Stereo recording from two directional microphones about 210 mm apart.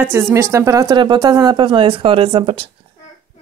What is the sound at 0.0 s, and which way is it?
A woman's voice, 10° right (ahead or behind).